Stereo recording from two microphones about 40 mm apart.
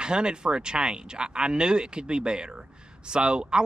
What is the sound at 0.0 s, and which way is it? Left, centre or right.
Speech, right.